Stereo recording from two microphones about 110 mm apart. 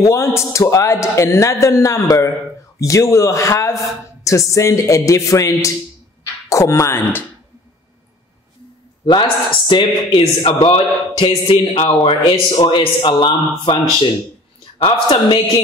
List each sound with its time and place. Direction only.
0.0 s a man's voice: 25° left (ahead or behind)
9.0 s a man's voice: 45° left (ahead or behind)
14.8 s a man's voice: 55° left (ahead or behind)